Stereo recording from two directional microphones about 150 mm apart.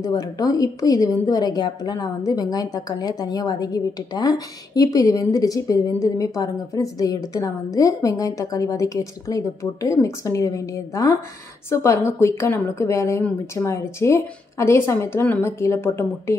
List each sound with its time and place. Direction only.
0.0 s a woman's voice: 25° left (ahead or behind)